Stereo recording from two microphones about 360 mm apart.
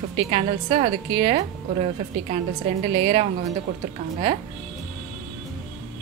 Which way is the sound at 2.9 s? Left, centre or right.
Centre.